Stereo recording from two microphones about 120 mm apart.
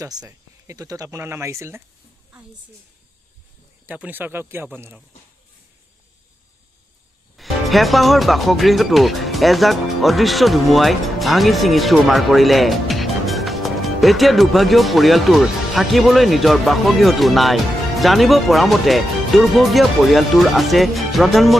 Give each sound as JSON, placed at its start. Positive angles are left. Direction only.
{"t": 0.0, "sound": "speech", "side_deg": -30}
{"t": 3.8, "sound": "speech", "side_deg": -15}
{"t": 7.3, "sound": "speech", "side_deg": 0}